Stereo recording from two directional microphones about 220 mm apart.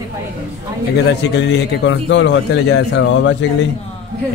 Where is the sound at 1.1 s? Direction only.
50° left (ahead or behind).